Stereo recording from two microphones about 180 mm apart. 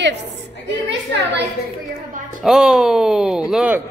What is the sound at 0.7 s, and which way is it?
Speech, 75° right (ahead or behind).